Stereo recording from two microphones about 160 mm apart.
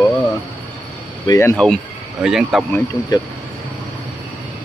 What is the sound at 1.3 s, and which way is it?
Speech, 20° left (ahead or behind).